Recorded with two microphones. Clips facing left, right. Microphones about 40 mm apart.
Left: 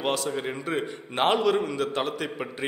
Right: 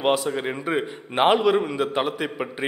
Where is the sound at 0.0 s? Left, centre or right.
Centre.